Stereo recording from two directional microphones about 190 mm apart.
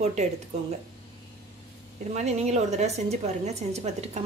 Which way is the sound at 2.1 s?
35° right (ahead or behind).